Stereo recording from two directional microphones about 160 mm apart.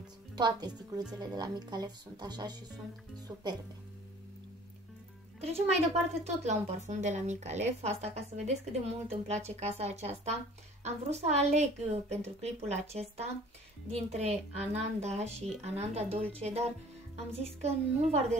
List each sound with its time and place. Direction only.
0.4 s speech: 25° right (ahead or behind)
5.4 s a woman's voice: 40° right (ahead or behind)